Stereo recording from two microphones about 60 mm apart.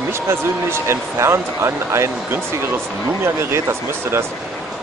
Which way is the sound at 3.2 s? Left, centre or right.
Right.